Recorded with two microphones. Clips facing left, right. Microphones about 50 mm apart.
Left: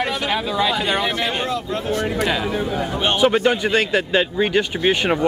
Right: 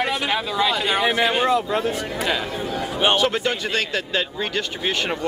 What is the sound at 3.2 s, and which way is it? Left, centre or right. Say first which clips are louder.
Speech: left 5 dB; centre.